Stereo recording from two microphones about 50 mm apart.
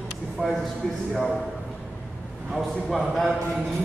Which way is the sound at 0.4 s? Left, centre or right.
Right.